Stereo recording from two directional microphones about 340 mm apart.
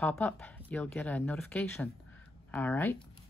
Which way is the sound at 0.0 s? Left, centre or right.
Centre.